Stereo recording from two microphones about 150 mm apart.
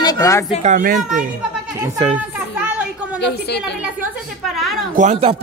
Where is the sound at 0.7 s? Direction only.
70° right (ahead or behind).